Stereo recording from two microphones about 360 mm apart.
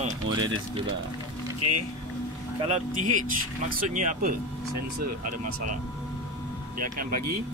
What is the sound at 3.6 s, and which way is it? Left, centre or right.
Speech, right.